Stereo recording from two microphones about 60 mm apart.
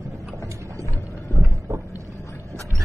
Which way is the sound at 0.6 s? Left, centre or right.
Right.